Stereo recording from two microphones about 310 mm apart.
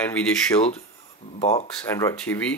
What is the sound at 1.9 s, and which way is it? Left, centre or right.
Speech, centre.